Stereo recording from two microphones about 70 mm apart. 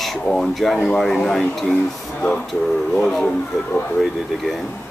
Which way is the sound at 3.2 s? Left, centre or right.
Left.